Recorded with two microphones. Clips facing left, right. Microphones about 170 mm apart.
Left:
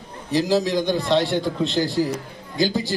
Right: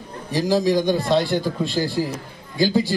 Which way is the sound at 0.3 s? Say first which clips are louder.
Right 1 dB; 15° right (ahead or behind).